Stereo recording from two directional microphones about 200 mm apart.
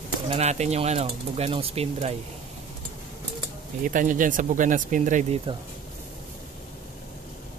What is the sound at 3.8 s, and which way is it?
Speech, 40° right (ahead or behind).